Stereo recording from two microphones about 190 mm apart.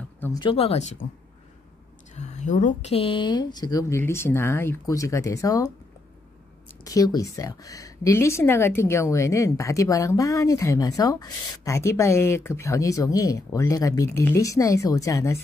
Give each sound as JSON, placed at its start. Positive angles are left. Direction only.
{"t": 0.2, "sound": "speech", "side_deg": 20}
{"t": 2.1, "sound": "a woman's voice", "side_deg": 40}
{"t": 6.8, "sound": "a woman's voice", "side_deg": 20}